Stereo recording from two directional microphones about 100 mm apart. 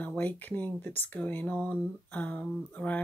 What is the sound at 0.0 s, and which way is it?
Speech, 15° left (ahead or behind).